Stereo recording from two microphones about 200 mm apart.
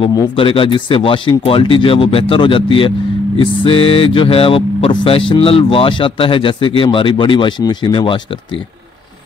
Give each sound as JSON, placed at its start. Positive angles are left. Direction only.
{"t": 0.0, "sound": "speech", "side_deg": 20}